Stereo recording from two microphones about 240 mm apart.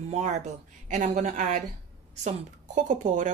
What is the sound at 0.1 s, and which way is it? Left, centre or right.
A woman's voice, right.